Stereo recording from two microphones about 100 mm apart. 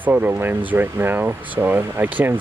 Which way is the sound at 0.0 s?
15° right (ahead or behind).